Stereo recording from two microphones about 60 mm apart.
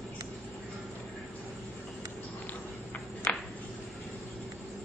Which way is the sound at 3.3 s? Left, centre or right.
Left.